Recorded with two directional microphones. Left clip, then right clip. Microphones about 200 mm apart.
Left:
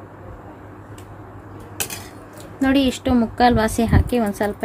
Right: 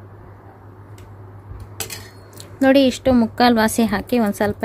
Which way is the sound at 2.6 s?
35° right (ahead or behind).